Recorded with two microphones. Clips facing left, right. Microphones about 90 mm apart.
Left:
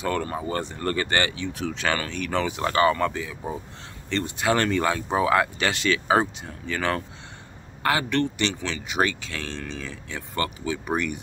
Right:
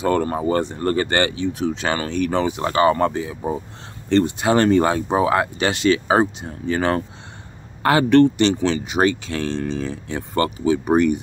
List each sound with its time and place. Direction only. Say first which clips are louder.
0.0 s speech: right 7 dB; 35° right (ahead or behind)
0.7 s speech: right 6 dB; 25° right (ahead or behind)
1.8 s speech: right 5 dB; 25° right (ahead or behind)
2.4 s speech: right 2 dB; 20° right (ahead or behind)
3.0 s speech: right 6 dB; 35° right (ahead or behind)
4.2 s speech: right 5 dB; 20° right (ahead or behind)
5.1 s speech: right 3 dB; 20° right (ahead or behind); by 11.1 s 35° right (ahead or behind)